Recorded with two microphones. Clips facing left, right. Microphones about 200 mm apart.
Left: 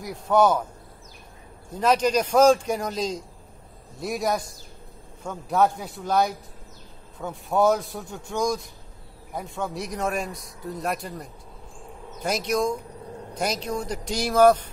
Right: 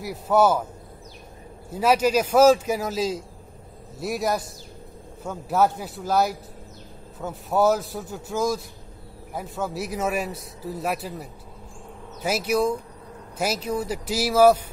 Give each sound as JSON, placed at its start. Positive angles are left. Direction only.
{"t": 0.0, "sound": "a man's voice", "side_deg": -5}
{"t": 1.7, "sound": "a man's voice", "side_deg": -5}